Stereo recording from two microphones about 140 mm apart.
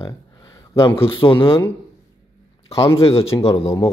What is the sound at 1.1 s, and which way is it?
Speech, 35° left (ahead or behind).